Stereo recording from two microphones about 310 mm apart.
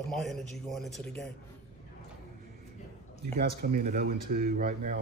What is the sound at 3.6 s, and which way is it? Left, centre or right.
Speech, right.